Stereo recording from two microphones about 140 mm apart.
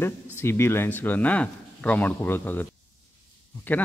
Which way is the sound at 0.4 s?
20° left (ahead or behind).